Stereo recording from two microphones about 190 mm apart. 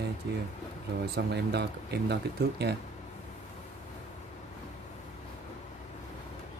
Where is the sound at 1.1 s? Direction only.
60° right (ahead or behind).